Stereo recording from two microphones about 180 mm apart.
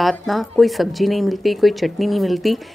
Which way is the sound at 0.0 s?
Centre (ahead or behind).